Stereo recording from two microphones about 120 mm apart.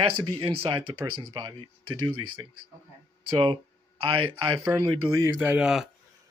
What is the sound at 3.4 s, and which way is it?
Speech, 45° right (ahead or behind).